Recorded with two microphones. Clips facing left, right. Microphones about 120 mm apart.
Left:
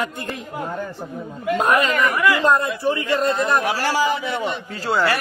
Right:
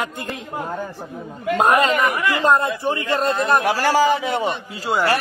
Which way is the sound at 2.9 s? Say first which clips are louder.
Left 2 dB; 50° right (ahead or behind).